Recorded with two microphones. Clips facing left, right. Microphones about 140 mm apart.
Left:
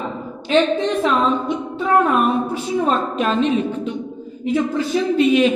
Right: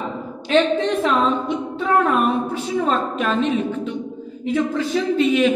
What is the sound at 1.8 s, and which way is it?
Speech, 5° left (ahead or behind).